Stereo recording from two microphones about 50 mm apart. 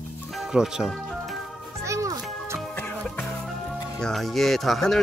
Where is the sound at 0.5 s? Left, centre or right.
Centre.